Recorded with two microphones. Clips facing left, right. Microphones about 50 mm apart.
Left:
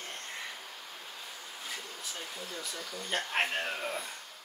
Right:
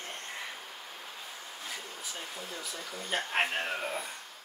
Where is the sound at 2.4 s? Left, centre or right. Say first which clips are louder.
Even; right.